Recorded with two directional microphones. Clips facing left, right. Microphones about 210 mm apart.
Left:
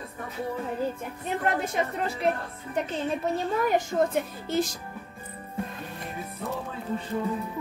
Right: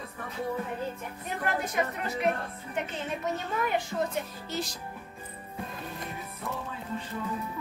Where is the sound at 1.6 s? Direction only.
25° left (ahead or behind); by 4.6 s 50° left (ahead or behind).